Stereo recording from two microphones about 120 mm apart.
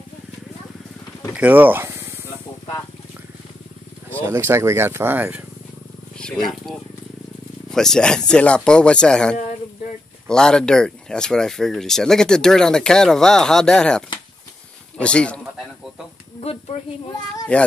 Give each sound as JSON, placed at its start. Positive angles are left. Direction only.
{"t": 1.3, "sound": "speech", "side_deg": -15}
{"t": 4.2, "sound": "speech", "side_deg": -20}
{"t": 6.1, "sound": "speech", "side_deg": 5}
{"t": 17.5, "sound": "speech", "side_deg": 10}